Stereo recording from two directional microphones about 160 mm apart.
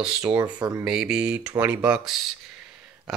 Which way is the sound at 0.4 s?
20° right (ahead or behind).